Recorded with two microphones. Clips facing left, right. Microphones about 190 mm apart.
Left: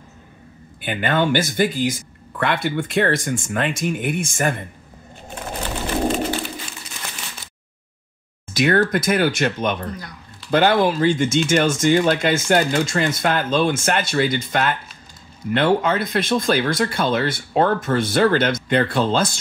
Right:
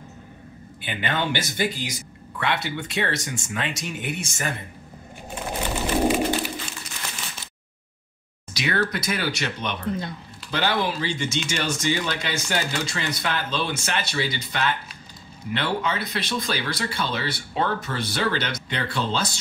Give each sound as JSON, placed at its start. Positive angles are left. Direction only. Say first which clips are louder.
{"t": 0.7, "sound": "speech", "louder": "left 7 dB", "side_deg": 50}
{"t": 5.3, "sound": "a sound", "louder": "even", "side_deg": -5}
{"t": 8.5, "sound": "speech", "louder": "left 8 dB", "side_deg": 50}
{"t": 9.8, "sound": "speech", "louder": "right 4 dB", "side_deg": -25}
{"t": 10.5, "sound": "speech", "louder": "left 8 dB", "side_deg": 50}